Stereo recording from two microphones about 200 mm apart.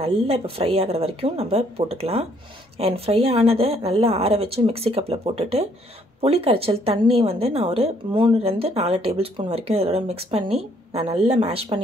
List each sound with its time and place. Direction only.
0.0 s a woman's voice: 30° right (ahead or behind)